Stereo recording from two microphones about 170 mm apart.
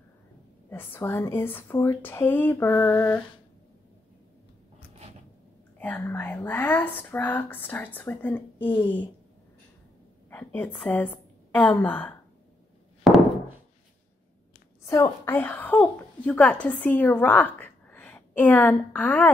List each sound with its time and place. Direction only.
0.7 s speech: 10° left (ahead or behind)
5.8 s speech: 10° left (ahead or behind)
10.3 s a woman's voice: 10° left (ahead or behind)
13.0 s knock: centre (ahead or behind)
14.8 s a woman's voice: 15° left (ahead or behind)